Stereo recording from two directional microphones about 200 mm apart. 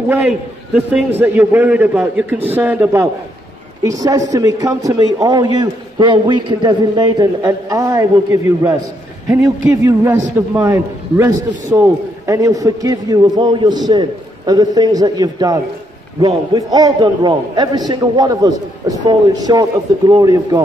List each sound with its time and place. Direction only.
0.1 s a man's voice: 5° right (ahead or behind)